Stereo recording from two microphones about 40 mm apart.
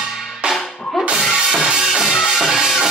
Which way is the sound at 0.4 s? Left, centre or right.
Right.